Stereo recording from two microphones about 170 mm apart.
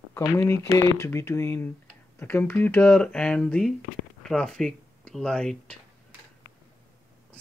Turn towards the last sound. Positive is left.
turn(degrees=5)  # may be behind; listen again after turning